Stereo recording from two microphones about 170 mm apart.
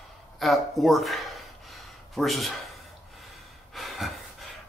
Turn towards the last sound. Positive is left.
turn(degrees=0)  # may be behind; listen again after turning